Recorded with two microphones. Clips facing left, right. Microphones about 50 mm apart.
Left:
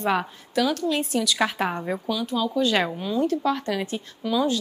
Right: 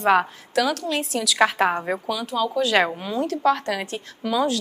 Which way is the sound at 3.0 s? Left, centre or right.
Right.